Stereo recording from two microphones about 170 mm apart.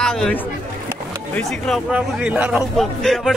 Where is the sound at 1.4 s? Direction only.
Centre (ahead or behind).